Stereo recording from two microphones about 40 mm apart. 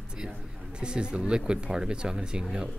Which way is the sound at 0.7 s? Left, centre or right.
Right.